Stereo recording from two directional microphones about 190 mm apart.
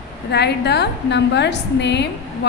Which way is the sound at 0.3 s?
60° left (ahead or behind).